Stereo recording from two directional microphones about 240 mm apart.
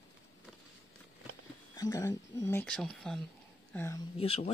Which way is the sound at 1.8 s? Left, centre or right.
Centre.